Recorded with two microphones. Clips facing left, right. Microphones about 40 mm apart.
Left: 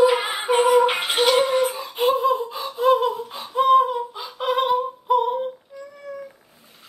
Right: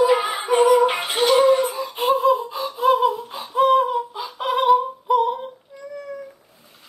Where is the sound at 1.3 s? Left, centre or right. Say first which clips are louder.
Right 3 dB; centre.